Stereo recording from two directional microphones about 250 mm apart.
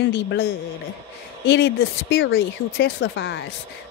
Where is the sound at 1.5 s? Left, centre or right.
Left.